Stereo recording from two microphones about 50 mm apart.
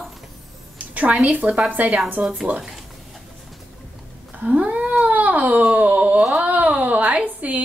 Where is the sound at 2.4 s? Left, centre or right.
Right.